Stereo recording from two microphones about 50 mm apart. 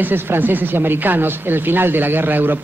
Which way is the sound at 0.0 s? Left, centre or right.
Right.